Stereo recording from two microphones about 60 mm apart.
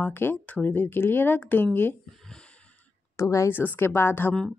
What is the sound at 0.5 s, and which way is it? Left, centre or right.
A woman's voice, left.